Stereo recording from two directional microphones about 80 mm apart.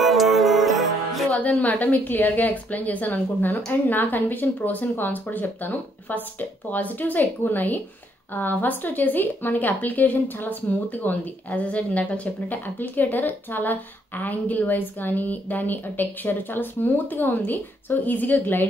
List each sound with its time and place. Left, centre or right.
0.0 s music: centre
1.4 s a woman's voice: centre